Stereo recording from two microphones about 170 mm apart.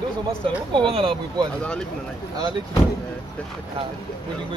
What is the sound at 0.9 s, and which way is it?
Speech, 30° right (ahead or behind).